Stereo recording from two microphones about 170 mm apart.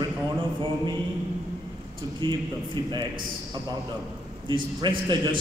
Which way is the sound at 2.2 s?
25° right (ahead or behind).